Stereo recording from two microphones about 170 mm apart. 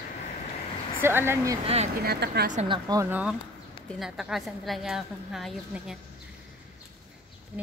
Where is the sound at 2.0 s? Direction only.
75° right (ahead or behind).